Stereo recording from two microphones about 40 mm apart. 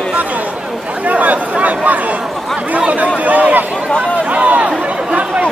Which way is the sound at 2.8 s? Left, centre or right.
Right.